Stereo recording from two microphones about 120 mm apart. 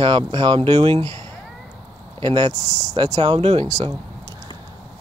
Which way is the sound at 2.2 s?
40° right (ahead or behind).